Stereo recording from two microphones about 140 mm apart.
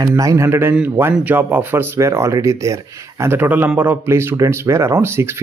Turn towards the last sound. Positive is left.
turn(degrees=-20)  # may be behind; listen again after turning